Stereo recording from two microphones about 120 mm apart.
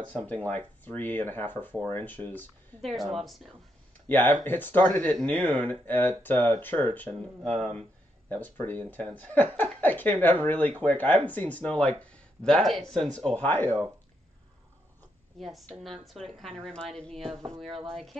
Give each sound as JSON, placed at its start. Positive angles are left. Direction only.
{"t": 0.5, "sound": "speech", "side_deg": 15}
{"t": 2.8, "sound": "speech", "side_deg": 0}
{"t": 4.1, "sound": "speech", "side_deg": 15}
{"t": 7.2, "sound": "speech", "side_deg": 0}
{"t": 8.3, "sound": "speech", "side_deg": 15}
{"t": 15.3, "sound": "speech", "side_deg": 0}